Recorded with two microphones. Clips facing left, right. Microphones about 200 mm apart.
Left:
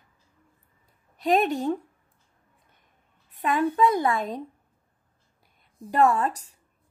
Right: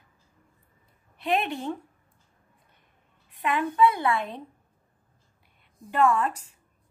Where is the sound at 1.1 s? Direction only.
40° left (ahead or behind).